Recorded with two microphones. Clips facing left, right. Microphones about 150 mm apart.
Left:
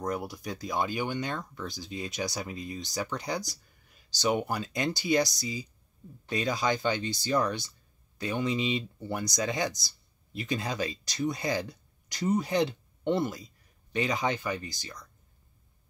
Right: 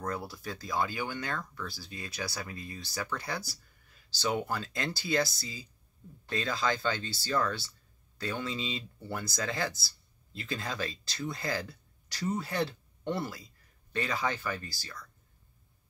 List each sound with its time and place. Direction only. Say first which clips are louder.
0.0 s speech: left 3 dB; 20° left (ahead or behind)